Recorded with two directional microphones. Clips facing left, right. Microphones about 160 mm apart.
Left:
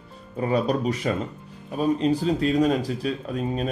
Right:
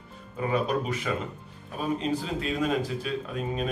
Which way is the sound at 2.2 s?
40° left (ahead or behind).